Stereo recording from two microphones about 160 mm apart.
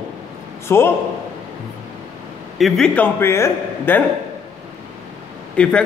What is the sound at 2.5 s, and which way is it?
A man's voice, centre (ahead or behind).